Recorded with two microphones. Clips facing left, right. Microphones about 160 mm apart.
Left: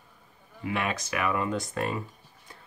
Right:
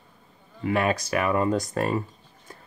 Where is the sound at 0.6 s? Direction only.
45° right (ahead or behind).